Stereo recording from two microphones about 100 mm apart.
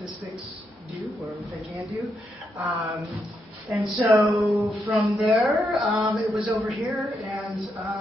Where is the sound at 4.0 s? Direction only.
30° right (ahead or behind).